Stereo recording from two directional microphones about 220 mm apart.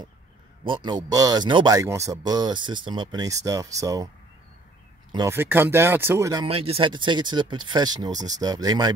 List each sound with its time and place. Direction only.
0.7 s speech: 20° right (ahead or behind)
5.1 s speech: 15° right (ahead or behind)